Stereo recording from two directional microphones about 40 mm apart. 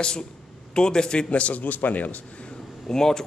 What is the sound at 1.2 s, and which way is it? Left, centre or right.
Speech, left.